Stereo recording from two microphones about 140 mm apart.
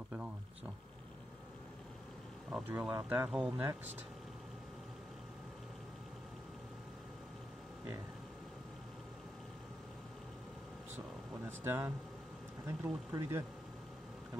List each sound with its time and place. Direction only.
2.5 s speech: 10° right (ahead or behind)
11.4 s speech: 15° right (ahead or behind)